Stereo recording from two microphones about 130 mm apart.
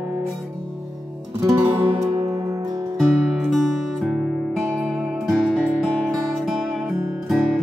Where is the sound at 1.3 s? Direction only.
25° right (ahead or behind).